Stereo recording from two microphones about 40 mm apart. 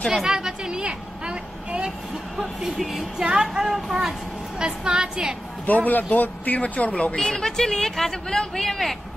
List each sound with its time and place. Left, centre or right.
0.1 s a sound: centre
1.2 s vehicle: right
2.8 s a woman's voice: centre
5.9 s speech: left
7.2 s speech: centre